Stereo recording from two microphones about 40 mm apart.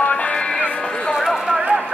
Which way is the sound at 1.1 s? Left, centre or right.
Centre.